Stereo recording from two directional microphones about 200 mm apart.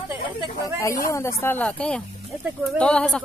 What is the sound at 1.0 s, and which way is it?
A woman's voice, 15° left (ahead or behind).